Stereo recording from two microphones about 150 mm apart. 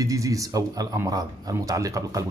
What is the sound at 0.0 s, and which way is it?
A man's voice, 20° right (ahead or behind).